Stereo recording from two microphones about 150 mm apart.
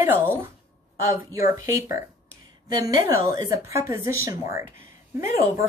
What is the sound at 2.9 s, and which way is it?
A woman's voice, 20° right (ahead or behind).